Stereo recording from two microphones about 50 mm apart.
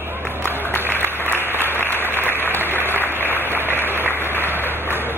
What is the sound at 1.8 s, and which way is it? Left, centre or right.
Applause, left.